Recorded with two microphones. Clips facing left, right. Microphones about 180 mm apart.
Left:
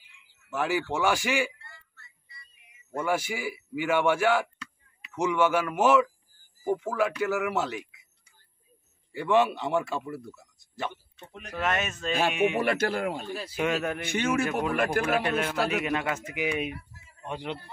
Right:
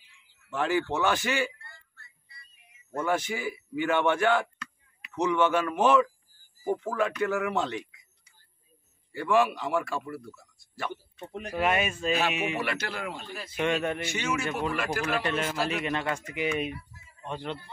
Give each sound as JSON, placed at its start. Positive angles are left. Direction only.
{"t": 0.5, "sound": "a man's voice", "side_deg": 10}
{"t": 2.9, "sound": "a man's voice", "side_deg": 10}
{"t": 9.1, "sound": "speech", "side_deg": 20}
{"t": 11.6, "sound": "a man's voice", "side_deg": -10}
{"t": 12.5, "sound": "speech", "side_deg": 50}
{"t": 13.5, "sound": "a man's voice", "side_deg": 5}
{"t": 14.0, "sound": "speech", "side_deg": 55}
{"t": 15.2, "sound": "a man's voice", "side_deg": 5}
{"t": 15.5, "sound": "speech", "side_deg": 60}
{"t": 15.8, "sound": "a man's voice", "side_deg": 5}